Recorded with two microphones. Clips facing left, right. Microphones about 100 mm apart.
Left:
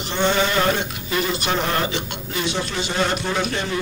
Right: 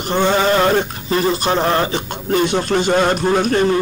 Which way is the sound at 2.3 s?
50° right (ahead or behind).